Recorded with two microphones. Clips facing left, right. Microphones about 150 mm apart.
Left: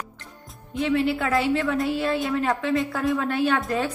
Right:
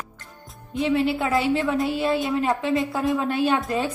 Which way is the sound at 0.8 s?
20° right (ahead or behind).